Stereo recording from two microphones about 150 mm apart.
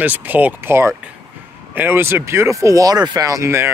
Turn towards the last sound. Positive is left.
turn(degrees=-20)  # may be behind; listen again after turning